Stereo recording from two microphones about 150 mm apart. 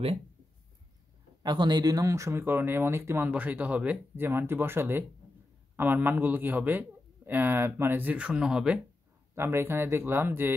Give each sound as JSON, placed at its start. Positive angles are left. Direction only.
{"t": 1.4, "sound": "speech", "side_deg": -30}
{"t": 9.3, "sound": "speech", "side_deg": -15}